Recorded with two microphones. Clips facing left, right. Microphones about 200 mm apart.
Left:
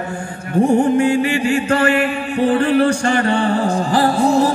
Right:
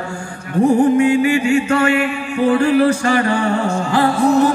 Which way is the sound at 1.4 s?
35° left (ahead or behind).